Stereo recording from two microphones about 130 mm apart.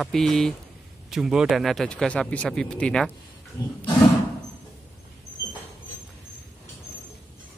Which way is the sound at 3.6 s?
30° left (ahead or behind).